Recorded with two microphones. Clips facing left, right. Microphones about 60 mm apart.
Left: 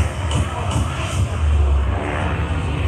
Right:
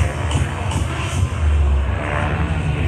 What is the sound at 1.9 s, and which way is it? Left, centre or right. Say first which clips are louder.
Vehicle: right 2 dB; centre.